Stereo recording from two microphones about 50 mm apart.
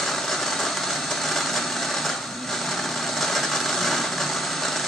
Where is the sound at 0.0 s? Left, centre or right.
Centre.